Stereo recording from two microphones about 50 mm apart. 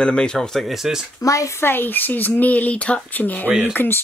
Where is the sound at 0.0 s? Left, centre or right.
Centre.